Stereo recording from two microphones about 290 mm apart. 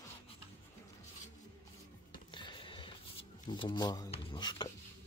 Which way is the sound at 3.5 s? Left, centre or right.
Centre.